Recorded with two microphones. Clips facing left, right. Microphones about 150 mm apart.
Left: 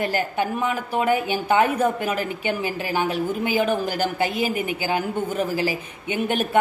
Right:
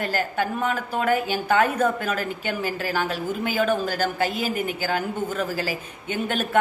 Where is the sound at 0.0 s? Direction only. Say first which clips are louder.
Left 2 dB; 15° left (ahead or behind).